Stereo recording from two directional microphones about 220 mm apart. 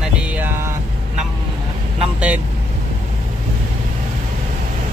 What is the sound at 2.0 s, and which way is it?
Speech, 5° right (ahead or behind).